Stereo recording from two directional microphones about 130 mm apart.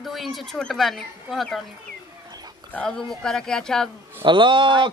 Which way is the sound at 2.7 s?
5° left (ahead or behind).